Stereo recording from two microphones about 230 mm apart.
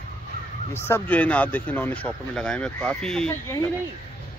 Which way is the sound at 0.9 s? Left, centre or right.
Centre.